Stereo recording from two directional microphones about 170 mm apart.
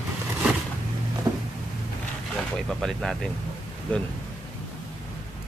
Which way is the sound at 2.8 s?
Centre (ahead or behind).